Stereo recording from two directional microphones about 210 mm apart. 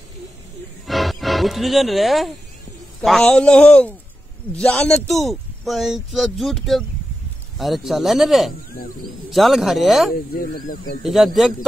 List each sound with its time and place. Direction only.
0.8 s music: centre (ahead or behind)
3.0 s speech: centre (ahead or behind)
10.3 s speech: 45° left (ahead or behind)
11.1 s speech: centre (ahead or behind)